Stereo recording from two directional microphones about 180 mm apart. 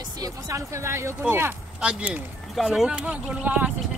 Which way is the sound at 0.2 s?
15° right (ahead or behind).